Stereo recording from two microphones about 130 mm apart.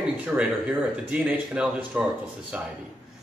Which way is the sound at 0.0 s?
5° right (ahead or behind).